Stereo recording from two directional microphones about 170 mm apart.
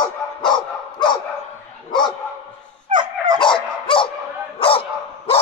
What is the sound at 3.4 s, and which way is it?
Dog, 30° left (ahead or behind).